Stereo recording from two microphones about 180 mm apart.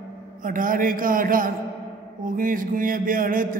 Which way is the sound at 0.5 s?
50° right (ahead or behind).